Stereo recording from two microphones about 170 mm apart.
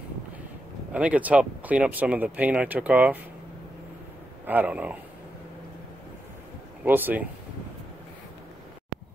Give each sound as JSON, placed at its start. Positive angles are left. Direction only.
{"t": 0.9, "sound": "speech", "side_deg": -10}
{"t": 4.5, "sound": "speech", "side_deg": -10}
{"t": 6.8, "sound": "speech", "side_deg": -10}